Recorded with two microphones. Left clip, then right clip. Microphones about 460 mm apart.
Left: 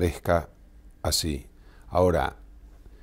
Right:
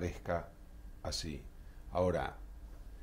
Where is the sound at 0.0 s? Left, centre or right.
Left.